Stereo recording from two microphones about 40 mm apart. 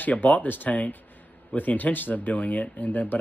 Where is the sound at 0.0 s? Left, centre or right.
Left.